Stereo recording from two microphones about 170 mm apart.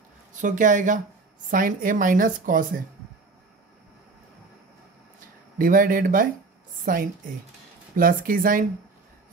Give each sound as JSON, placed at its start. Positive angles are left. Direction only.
{"t": 0.4, "sound": "speech", "side_deg": -50}
{"t": 5.6, "sound": "speech", "side_deg": -55}